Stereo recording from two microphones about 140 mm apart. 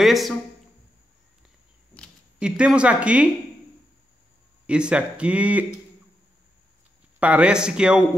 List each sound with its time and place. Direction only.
0.0 s speech: centre (ahead or behind)
2.4 s speech: 5° right (ahead or behind)
4.6 s speech: 5° right (ahead or behind)
7.2 s speech: 10° right (ahead or behind)